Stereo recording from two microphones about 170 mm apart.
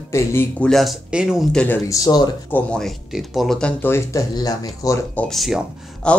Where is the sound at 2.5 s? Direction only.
5° left (ahead or behind).